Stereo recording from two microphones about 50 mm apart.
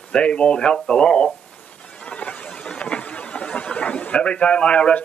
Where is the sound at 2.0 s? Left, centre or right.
Left.